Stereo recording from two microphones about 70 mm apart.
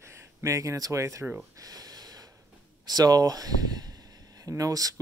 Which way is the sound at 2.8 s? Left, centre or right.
Right.